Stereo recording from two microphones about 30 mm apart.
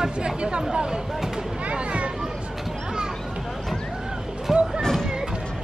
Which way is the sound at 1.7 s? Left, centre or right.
Right.